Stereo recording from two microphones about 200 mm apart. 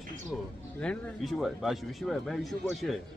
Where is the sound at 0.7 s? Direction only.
Centre (ahead or behind).